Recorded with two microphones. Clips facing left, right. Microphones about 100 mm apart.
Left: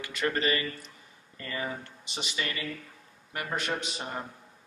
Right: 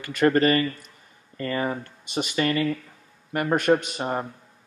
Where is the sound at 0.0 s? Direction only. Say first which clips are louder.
Right 10 dB; 50° right (ahead or behind).